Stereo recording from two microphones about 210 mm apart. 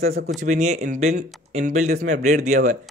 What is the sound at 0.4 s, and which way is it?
Speech, 35° right (ahead or behind).